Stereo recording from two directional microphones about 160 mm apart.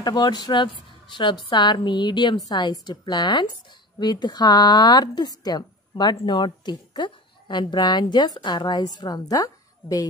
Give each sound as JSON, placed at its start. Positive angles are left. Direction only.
{"t": 0.0, "sound": "a woman's voice", "side_deg": 25}